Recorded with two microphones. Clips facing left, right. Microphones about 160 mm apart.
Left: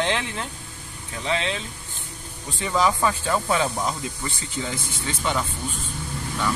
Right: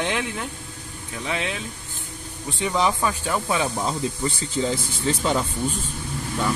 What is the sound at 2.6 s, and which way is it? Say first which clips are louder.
Speech: left 1 dB; 15° right (ahead or behind).